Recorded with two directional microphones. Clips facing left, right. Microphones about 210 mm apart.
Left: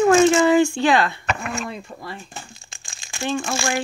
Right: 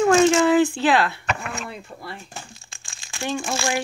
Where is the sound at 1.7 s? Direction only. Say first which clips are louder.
Left 2 dB; 5° right (ahead or behind).